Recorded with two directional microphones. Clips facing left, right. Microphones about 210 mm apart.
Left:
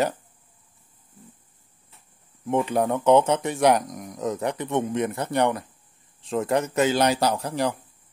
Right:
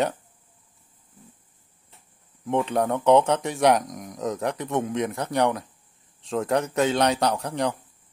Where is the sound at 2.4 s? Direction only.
5° left (ahead or behind).